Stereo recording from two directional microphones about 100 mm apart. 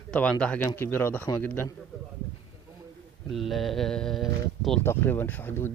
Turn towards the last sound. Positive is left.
turn(degrees=20)  # may be behind; listen again after turning